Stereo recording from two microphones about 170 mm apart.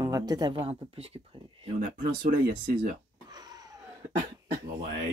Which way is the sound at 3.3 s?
25° right (ahead or behind).